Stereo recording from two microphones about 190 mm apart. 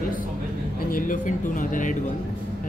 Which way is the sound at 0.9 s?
45° left (ahead or behind).